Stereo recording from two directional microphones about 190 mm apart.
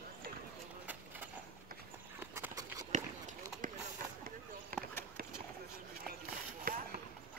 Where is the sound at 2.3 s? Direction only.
15° right (ahead or behind).